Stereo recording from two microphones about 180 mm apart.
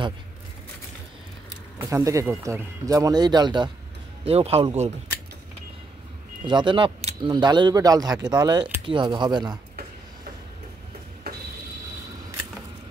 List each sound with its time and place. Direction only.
1.8 s a man's voice: 15° right (ahead or behind); by 4.9 s 35° right (ahead or behind)
6.4 s speech: 25° right (ahead or behind)